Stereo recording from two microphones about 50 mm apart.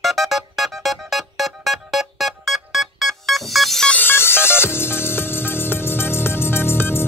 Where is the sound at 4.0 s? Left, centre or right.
Left.